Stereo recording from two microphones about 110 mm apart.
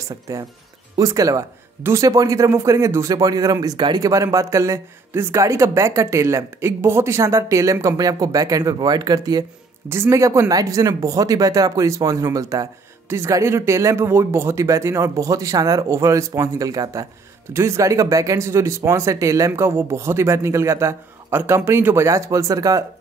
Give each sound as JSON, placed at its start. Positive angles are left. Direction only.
{"t": 0.3, "sound": "a man's voice", "side_deg": -25}
{"t": 9.8, "sound": "a man's voice", "side_deg": -25}